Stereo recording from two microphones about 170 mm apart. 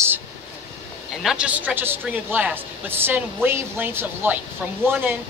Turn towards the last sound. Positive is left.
turn(degrees=-10)  # may be behind; listen again after turning